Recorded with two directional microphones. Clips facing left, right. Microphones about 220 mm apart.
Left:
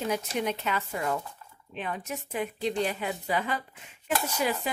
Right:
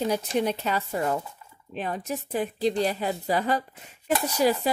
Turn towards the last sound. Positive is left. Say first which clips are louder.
# right 6 dB
turn(degrees=-35)  # may be behind; listen again after turning